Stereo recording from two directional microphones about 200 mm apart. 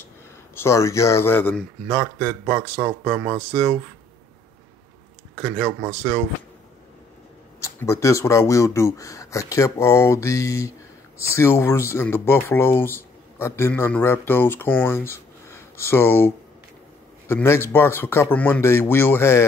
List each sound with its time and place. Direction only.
0.6 s speech: 15° left (ahead or behind)
3.0 s speech: 5° right (ahead or behind)
5.3 s speech: 5° left (ahead or behind)
5.7 s speech: 15° right (ahead or behind)
7.6 s speech: 15° left (ahead or behind)